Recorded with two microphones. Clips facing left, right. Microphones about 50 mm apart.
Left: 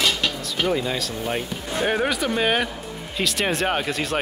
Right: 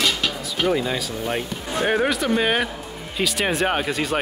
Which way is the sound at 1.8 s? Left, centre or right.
Centre.